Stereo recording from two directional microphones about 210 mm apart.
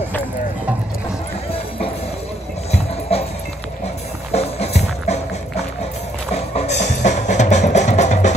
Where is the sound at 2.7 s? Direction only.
30° left (ahead or behind).